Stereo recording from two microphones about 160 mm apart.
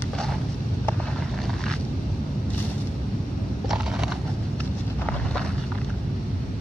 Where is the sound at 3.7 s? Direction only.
5° right (ahead or behind).